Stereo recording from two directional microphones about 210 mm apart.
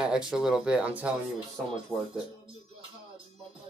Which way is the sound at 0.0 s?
5° right (ahead or behind).